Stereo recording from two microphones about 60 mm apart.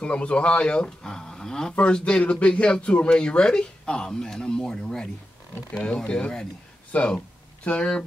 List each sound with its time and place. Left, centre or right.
0.0 s speech: centre